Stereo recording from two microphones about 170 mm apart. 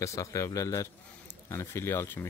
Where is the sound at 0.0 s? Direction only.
20° left (ahead or behind).